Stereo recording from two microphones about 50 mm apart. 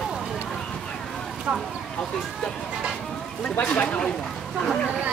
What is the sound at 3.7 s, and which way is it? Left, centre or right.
Speech, left.